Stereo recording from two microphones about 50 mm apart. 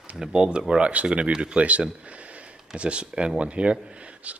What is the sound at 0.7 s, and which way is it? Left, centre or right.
Speech, right.